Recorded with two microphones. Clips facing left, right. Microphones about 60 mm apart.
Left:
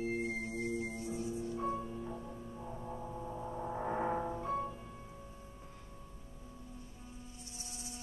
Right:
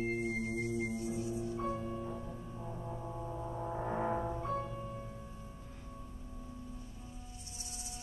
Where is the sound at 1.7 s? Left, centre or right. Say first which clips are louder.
Right 1 dB; centre.